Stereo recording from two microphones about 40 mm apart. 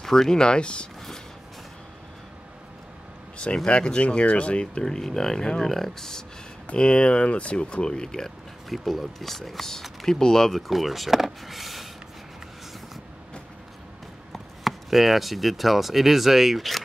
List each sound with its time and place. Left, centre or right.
0.0 s speech: centre
0.4 s speech: left
3.5 s speech: left
4.8 s speech: centre
6.7 s speech: left
8.6 s speech: centre
10.7 s a sound: centre
14.3 s speech: centre